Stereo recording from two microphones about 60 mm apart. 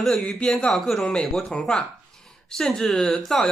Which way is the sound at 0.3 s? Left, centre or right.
Centre.